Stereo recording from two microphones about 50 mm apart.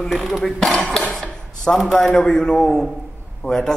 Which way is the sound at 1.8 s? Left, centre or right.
Centre.